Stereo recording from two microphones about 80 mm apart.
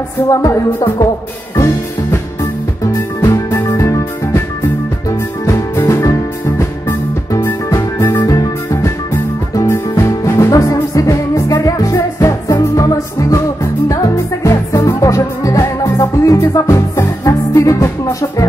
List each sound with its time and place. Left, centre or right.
0.3 s music: left
0.7 s music: left
2.9 s music: left
5.4 s music: left